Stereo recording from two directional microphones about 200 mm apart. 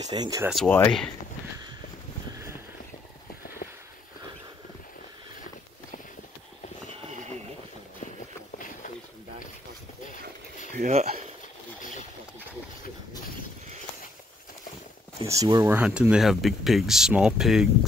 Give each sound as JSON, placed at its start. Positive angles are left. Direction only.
{"t": 0.1, "sound": "speech", "side_deg": -20}
{"t": 0.7, "sound": "speech", "side_deg": 10}
{"t": 8.5, "sound": "a sound", "side_deg": 40}
{"t": 10.8, "sound": "speech", "side_deg": -35}
{"t": 15.2, "sound": "speech", "side_deg": -15}